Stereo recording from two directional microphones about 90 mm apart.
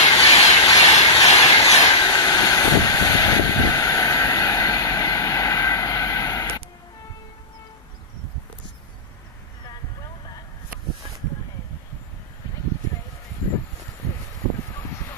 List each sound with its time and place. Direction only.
0.0 s train: 45° left (ahead or behind)
2.0 s vehicle: 50° left (ahead or behind)